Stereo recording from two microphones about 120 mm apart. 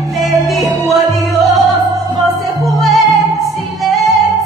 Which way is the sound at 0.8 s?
Centre (ahead or behind).